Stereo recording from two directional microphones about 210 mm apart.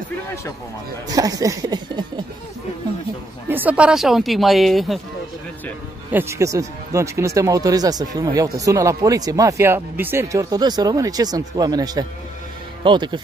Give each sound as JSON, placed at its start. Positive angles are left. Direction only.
{"t": 1.1, "sound": "speech", "side_deg": -15}
{"t": 3.4, "sound": "speech", "side_deg": -10}
{"t": 6.1, "sound": "speech", "side_deg": -15}